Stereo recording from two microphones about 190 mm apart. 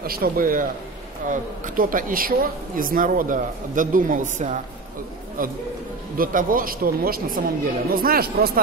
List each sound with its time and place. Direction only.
0.0 s speech: 50° right (ahead or behind)